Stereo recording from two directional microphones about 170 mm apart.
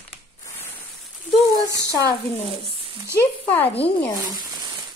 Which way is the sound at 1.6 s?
20° right (ahead or behind).